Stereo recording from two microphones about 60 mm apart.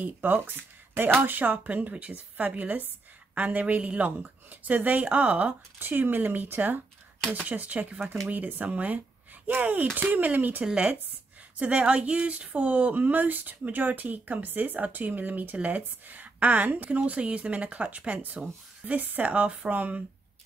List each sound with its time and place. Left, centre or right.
0.0 s speech: right
10.6 s speech: centre